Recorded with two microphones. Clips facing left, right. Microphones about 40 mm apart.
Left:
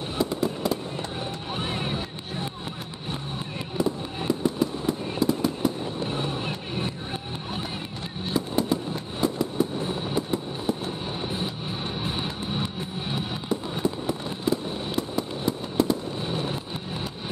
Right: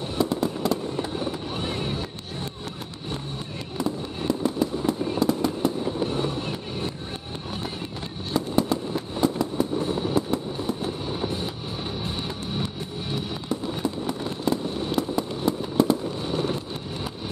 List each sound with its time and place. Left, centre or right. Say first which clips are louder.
0.2 s fireworks: right 1 dB; centre
1.6 s music: left 1 dB; centre
3.7 s fireworks: left 1 dB; centre
6.0 s vehicle: right 2 dB; centre
8.3 s fireworks: right 1 dB; centre
11.1 s vehicle: even; centre
12.0 s music: left 1 dB; left
13.5 s fireworks: left 1 dB; centre
16.3 s vehicle: right 4 dB; centre